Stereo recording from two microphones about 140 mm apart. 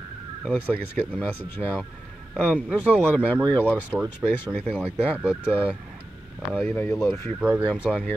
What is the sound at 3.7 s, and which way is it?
Speech, 10° right (ahead or behind).